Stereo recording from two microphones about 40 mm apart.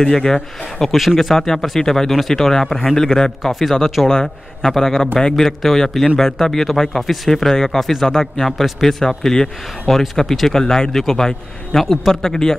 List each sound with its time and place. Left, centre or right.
0.0 s a man's voice: centre
7.8 s speech: centre
8.1 s a man's voice: centre
8.5 s a man's voice: centre
11.8 s speech: centre
12.1 s a man's voice: centre